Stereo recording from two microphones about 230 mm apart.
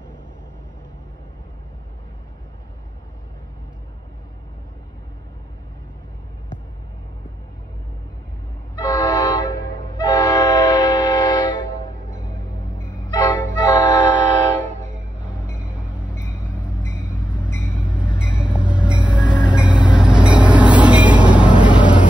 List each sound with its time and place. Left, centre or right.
8.7 s music: centre
11.5 s music: right
13.1 s music: centre
14.6 s vehicle: right
15.6 s vehicle: centre
16.2 s vehicle: right
18.5 s vehicle: centre
19.0 s train: centre
19.5 s vehicle: centre